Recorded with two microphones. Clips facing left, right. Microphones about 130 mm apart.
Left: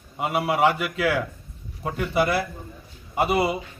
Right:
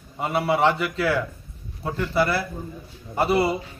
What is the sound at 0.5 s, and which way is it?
A man's voice, 10° left (ahead or behind).